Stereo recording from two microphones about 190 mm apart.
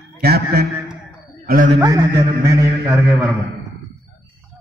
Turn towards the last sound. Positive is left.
turn(degrees=-15)  # may be behind; listen again after turning